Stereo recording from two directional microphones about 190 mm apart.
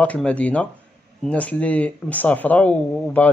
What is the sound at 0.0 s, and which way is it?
Speech, 5° left (ahead or behind).